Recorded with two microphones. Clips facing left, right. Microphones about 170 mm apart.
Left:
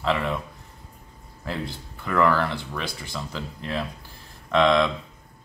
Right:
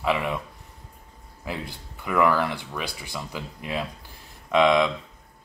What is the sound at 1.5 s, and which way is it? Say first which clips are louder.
Speech: left 2 dB; 10° right (ahead or behind).